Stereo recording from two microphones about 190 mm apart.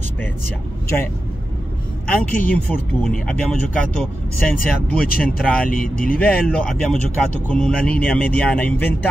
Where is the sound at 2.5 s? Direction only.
10° left (ahead or behind).